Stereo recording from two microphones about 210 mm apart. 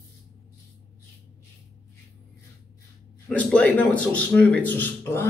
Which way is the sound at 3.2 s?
5° left (ahead or behind).